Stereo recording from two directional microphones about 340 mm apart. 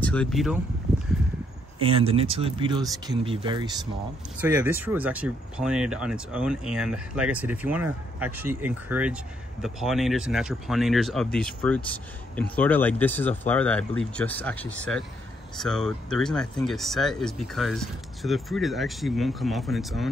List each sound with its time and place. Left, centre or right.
0.0 s speech: centre
0.9 s a sound: centre
1.8 s speech: centre